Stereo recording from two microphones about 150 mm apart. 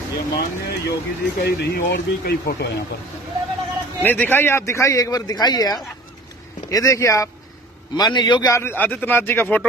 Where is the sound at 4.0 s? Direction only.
10° left (ahead or behind).